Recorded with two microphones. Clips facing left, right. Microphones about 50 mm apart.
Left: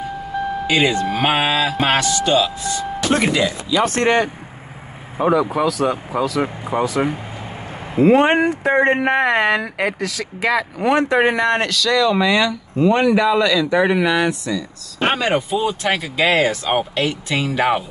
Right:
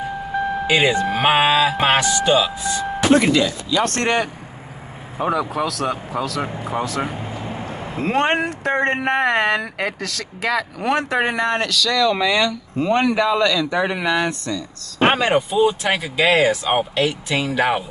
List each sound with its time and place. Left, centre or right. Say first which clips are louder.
0.7 s speech: even; centre
3.3 s speech: left 1 dB; centre
15.0 s speech: right 2 dB; right
15.3 s speech: right 2 dB; centre